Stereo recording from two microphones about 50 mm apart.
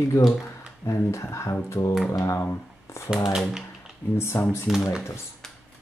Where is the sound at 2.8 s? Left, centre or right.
Left.